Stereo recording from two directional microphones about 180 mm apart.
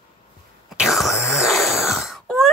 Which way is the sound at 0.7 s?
Centre (ahead or behind).